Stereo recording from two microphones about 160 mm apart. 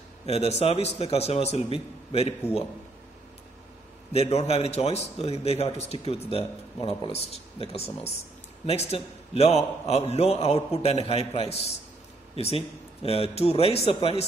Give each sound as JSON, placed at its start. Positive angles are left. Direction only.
{"t": 0.3, "sound": "speech", "side_deg": 40}
{"t": 4.1, "sound": "speech", "side_deg": 40}